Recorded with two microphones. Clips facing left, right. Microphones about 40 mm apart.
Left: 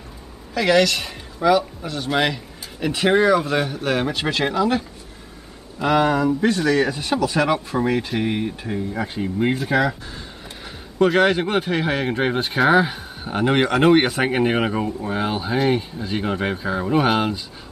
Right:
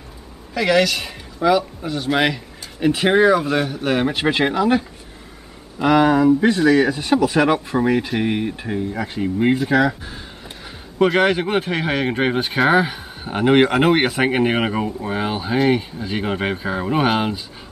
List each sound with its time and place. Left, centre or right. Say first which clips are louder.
0.6 s speech: even; centre
4.1 s speech: right 3 dB; centre
7.1 s speech: right 3 dB; centre
8.9 s speech: right 2 dB; centre